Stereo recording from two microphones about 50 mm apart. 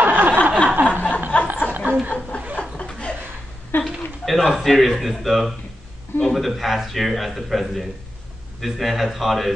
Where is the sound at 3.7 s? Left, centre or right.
Left.